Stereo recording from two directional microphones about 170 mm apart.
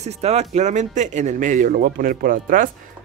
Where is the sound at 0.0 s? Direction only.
40° right (ahead or behind).